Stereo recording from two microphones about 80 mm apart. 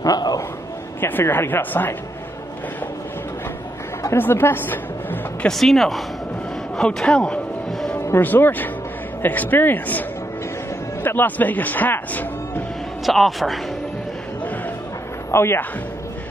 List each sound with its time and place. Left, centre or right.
0.0 s a sound: left
1.0 s speech: left
4.2 s speech: left
5.5 s a man's voice: centre
8.2 s speech: left
11.1 s speech: left
13.0 s a man's voice: centre
15.3 s a man's voice: left